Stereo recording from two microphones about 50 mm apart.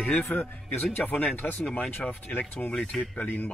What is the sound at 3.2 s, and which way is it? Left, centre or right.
Speech, left.